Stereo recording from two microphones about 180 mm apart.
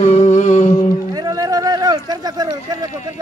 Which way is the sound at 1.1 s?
20° right (ahead or behind).